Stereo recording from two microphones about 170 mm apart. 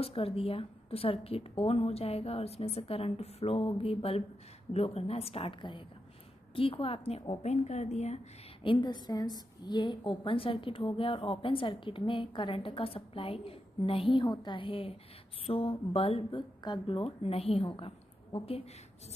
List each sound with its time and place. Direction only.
0.0 s a woman's voice: 35° left (ahead or behind)
8.6 s a woman's voice: 25° left (ahead or behind)